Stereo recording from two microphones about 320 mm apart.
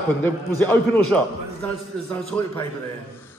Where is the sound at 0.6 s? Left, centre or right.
Centre.